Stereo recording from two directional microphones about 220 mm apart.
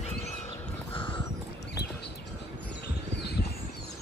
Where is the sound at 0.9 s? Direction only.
20° left (ahead or behind).